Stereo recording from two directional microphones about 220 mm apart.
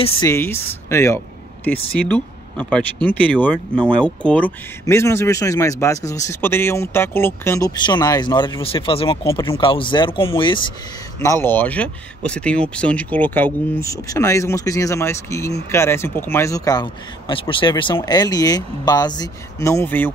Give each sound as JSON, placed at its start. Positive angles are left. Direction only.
{"t": 0.2, "sound": "speech", "side_deg": 10}